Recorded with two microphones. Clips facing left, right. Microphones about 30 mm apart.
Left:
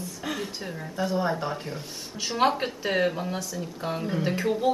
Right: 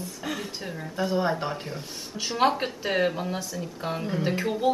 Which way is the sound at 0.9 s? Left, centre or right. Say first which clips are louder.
Right 1 dB; centre.